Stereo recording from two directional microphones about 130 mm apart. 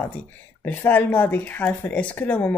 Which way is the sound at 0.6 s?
15° left (ahead or behind).